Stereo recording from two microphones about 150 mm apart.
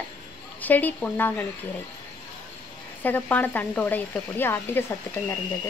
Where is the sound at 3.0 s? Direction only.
10° left (ahead or behind).